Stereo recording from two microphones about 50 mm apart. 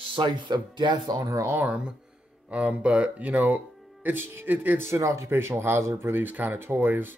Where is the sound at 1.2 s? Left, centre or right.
Right.